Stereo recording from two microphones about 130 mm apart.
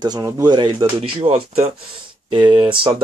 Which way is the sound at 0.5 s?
35° right (ahead or behind).